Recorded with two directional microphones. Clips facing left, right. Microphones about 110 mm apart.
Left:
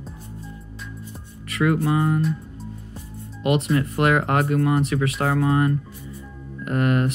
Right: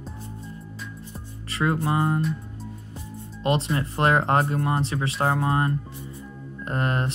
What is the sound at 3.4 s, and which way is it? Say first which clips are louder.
Speech: left 3 dB; 30° right (ahead or behind).